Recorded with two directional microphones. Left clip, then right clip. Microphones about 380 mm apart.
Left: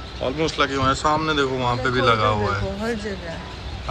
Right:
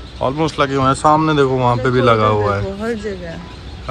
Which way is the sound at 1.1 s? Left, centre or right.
Right.